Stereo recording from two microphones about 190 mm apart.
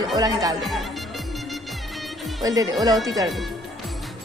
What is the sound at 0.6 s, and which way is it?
Music, centre (ahead or behind).